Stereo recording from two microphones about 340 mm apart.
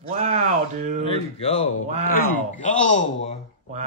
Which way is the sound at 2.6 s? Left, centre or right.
Left.